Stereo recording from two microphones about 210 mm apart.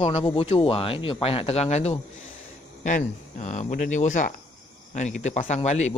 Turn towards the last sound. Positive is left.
turn(degrees=35)  # may be behind; listen again after turning